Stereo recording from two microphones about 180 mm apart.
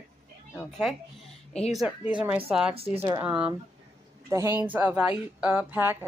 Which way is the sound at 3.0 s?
10° right (ahead or behind).